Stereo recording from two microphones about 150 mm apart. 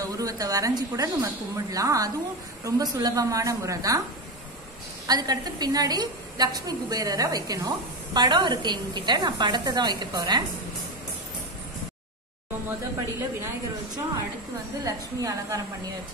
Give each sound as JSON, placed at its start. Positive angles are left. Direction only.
{"t": 0.0, "sound": "a woman's voice", "side_deg": -25}
{"t": 5.0, "sound": "a woman's voice", "side_deg": -25}
{"t": 14.9, "sound": "a woman's voice", "side_deg": -25}